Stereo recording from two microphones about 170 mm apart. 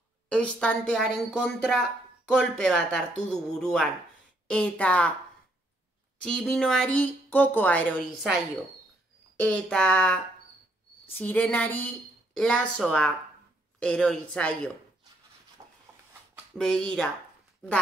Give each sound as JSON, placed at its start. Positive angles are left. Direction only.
{"t": 0.3, "sound": "a woman's voice", "side_deg": 5}
{"t": 6.2, "sound": "a woman's voice", "side_deg": 5}
{"t": 9.4, "sound": "a woman's voice", "side_deg": 5}
{"t": 15.6, "sound": "a sound", "side_deg": -25}
{"t": 16.5, "sound": "a woman's voice", "side_deg": 5}